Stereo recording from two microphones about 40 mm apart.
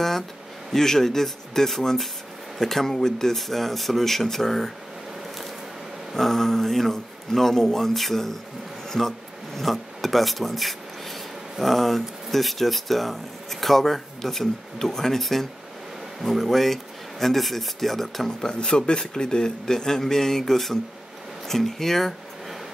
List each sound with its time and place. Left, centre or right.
0.7 s speech: centre
6.1 s speech: centre
18.5 s speech: centre